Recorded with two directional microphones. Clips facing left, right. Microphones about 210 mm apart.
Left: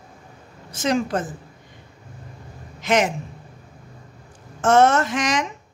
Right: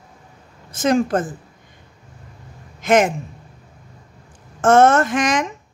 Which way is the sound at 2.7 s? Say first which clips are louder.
Right 4 dB; 50° right (ahead or behind).